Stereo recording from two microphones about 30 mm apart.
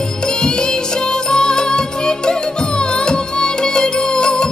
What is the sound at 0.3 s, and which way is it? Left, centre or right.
Music, left.